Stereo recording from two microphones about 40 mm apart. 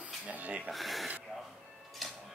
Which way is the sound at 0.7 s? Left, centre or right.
Centre.